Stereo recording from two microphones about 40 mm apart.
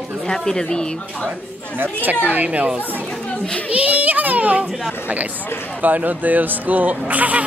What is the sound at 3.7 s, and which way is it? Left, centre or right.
Speech, right.